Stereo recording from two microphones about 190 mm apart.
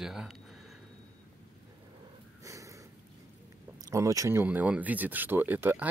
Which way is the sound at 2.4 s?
15° right (ahead or behind).